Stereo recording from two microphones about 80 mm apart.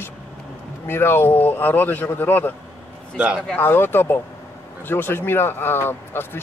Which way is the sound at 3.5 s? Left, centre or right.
Left.